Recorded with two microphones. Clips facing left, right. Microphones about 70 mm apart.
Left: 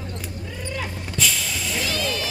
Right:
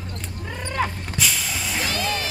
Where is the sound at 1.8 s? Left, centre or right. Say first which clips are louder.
Right 1 dB; right.